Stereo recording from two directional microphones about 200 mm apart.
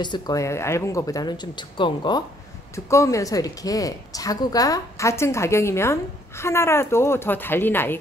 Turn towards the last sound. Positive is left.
turn(degrees=10)  # may be behind; listen again after turning